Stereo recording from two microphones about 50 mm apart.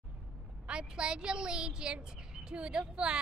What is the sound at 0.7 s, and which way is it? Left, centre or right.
A woman's voice, centre.